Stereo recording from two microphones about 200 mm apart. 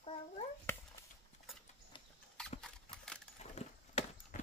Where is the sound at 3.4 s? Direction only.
35° left (ahead or behind).